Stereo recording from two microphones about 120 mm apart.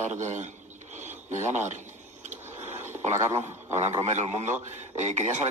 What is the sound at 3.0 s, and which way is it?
A man's voice, 70° right (ahead or behind).